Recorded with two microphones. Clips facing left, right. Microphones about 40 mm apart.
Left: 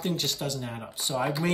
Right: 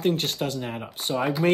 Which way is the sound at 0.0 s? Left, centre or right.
Right.